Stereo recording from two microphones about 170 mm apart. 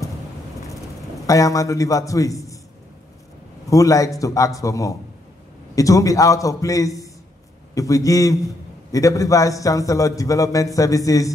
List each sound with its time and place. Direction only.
1.2 s a man's voice: 20° left (ahead or behind)
3.7 s a man's voice: 20° left (ahead or behind)